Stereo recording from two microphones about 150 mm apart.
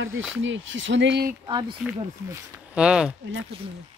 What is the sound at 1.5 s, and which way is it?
Speech, 30° right (ahead or behind).